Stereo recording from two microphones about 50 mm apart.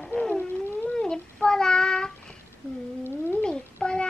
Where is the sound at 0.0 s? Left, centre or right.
Centre.